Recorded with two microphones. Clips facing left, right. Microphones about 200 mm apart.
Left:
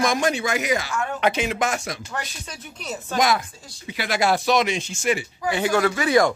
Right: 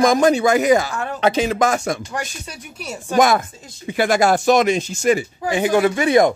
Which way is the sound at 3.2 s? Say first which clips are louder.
Right 6 dB; 50° right (ahead or behind).